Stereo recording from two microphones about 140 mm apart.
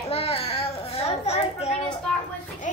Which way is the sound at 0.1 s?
45° left (ahead or behind).